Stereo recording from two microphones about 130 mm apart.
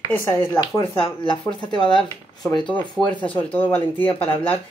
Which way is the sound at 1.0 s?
40° left (ahead or behind).